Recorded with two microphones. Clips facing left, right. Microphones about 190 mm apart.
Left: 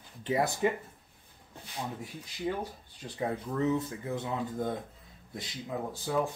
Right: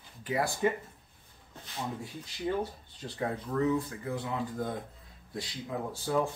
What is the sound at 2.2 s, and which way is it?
Speech, 15° left (ahead or behind).